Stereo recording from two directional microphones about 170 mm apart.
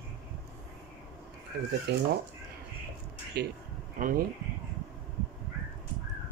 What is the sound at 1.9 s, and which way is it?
Speech, 75° right (ahead or behind).